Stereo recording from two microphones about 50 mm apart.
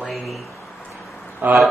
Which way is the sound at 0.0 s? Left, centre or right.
Centre.